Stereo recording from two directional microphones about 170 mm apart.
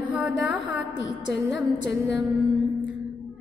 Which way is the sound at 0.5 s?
90° left.